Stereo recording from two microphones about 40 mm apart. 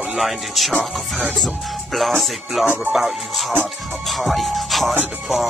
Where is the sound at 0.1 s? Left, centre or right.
Centre.